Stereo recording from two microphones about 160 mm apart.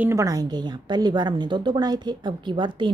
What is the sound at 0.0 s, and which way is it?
A woman's voice, 20° right (ahead or behind).